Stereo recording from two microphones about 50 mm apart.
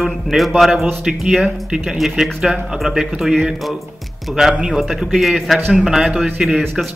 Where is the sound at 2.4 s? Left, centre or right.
Centre.